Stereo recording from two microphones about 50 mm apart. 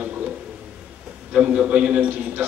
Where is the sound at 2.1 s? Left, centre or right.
Right.